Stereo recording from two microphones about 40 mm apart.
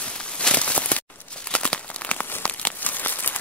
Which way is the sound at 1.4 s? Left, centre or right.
Left.